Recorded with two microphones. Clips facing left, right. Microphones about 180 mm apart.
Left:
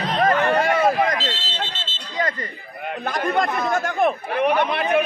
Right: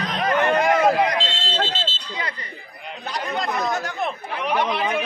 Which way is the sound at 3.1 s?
50° left (ahead or behind).